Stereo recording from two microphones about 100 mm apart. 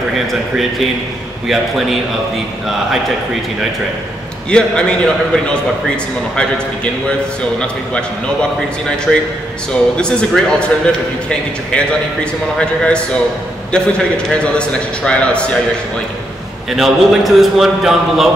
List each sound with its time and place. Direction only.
0.3 s a man's voice: centre (ahead or behind)
4.5 s a man's voice: 10° left (ahead or behind)
16.7 s a man's voice: 5° right (ahead or behind)